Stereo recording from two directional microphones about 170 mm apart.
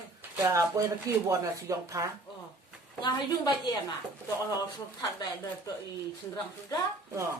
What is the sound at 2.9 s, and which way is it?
Speech, 25° left (ahead or behind).